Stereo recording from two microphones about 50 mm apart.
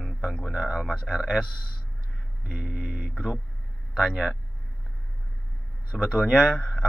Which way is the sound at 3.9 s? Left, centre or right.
Centre.